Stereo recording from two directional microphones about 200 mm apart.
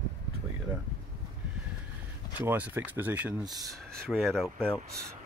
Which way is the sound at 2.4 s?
10° right (ahead or behind).